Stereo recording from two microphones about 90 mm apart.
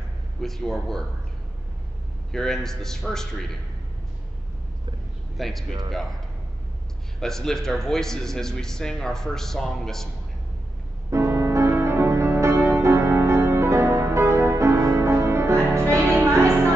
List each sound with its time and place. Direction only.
0.4 s a man's voice: 5° left (ahead or behind)
2.3 s a man's voice: 5° left (ahead or behind)
5.4 s a man's voice: centre (ahead or behind)
7.2 s a man's voice: 5° left (ahead or behind)
11.1 s music: 35° right (ahead or behind)